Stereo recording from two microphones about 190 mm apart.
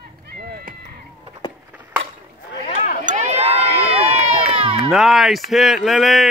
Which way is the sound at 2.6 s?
35° left (ahead or behind).